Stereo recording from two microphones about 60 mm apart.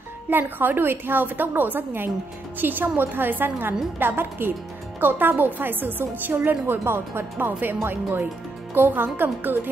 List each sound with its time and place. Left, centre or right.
0.3 s a woman's voice: right